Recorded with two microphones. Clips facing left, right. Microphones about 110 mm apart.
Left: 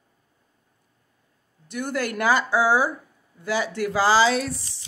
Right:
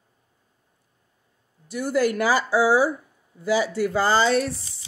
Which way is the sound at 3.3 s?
20° right (ahead or behind).